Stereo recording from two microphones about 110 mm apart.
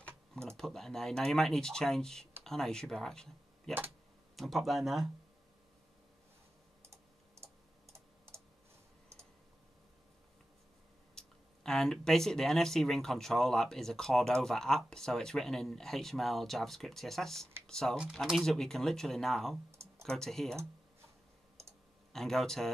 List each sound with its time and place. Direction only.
0.5 s speech: 5° left (ahead or behind)
6.8 s typing: 25° right (ahead or behind)
11.1 s speech: 5° left (ahead or behind)
22.1 s speech: 5° left (ahead or behind)